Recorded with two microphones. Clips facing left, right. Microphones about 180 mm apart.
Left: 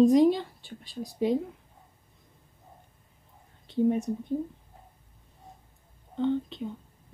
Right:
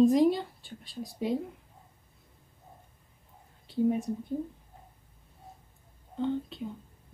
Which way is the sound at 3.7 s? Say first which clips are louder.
Left 2 dB; 5° right (ahead or behind).